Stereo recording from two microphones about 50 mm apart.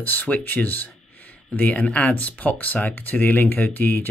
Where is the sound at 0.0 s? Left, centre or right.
Left.